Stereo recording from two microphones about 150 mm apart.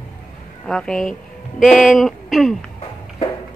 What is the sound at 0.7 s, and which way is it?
Speech, 5° left (ahead or behind).